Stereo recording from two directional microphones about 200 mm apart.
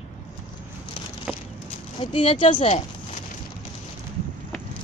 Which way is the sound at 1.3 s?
5° right (ahead or behind).